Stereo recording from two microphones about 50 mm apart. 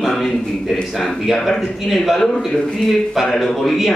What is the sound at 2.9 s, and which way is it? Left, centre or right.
Speech, centre.